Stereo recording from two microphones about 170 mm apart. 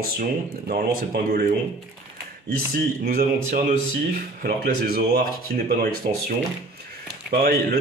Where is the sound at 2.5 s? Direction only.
60° right (ahead or behind).